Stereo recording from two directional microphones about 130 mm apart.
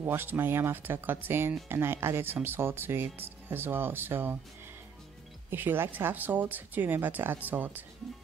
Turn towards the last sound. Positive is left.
turn(degrees=-15)  # may be behind; listen again after turning